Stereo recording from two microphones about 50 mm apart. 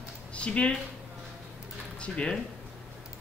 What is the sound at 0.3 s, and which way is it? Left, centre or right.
Speech, left.